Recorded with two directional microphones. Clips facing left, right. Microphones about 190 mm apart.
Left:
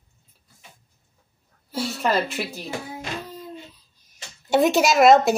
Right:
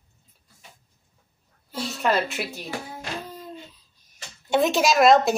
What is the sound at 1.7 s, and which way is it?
Speech, 5° left (ahead or behind).